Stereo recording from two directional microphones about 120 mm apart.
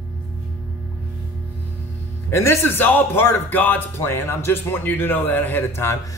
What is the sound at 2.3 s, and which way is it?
A man's voice, 20° left (ahead or behind).